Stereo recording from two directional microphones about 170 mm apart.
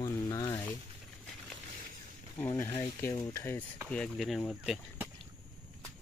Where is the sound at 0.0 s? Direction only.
20° left (ahead or behind).